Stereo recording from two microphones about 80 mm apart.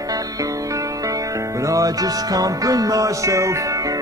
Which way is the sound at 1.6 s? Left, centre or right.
Right.